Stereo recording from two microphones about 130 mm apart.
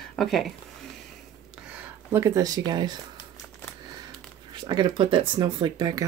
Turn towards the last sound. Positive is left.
turn(degrees=-30)  # may be behind; listen again after turning